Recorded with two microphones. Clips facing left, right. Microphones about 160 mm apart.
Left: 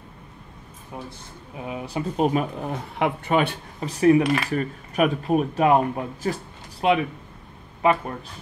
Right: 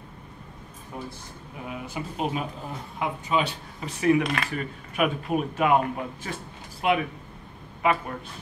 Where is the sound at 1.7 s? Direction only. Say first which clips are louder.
Left 6 dB; 35° left (ahead or behind).